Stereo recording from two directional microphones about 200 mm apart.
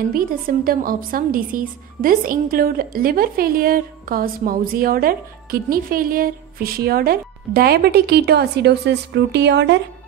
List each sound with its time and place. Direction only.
0.1 s speech: 45° right (ahead or behind)